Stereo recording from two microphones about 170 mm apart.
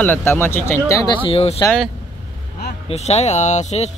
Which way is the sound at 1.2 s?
35° left (ahead or behind).